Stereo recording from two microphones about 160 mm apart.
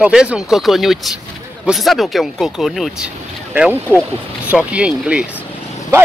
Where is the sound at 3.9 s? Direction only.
10° left (ahead or behind).